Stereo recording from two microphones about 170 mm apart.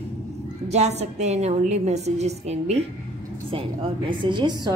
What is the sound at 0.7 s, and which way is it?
A woman's voice, 40° right (ahead or behind).